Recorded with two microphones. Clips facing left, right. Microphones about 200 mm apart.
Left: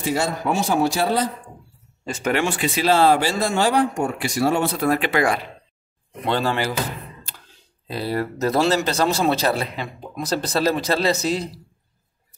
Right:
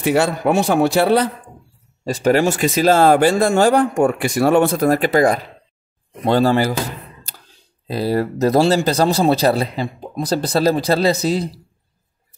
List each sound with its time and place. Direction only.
0.0 s a man's voice: 65° right (ahead or behind)
2.0 s speech: 35° right (ahead or behind)
7.9 s speech: 40° right (ahead or behind)